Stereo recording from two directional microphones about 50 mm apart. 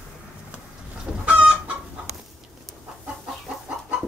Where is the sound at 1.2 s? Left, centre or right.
Centre.